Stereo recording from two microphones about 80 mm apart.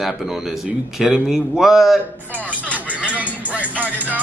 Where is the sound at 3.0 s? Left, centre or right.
Centre.